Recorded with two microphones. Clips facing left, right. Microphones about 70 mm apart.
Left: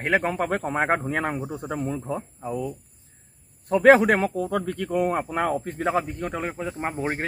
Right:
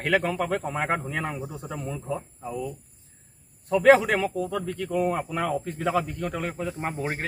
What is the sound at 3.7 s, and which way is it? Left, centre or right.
Speech, left.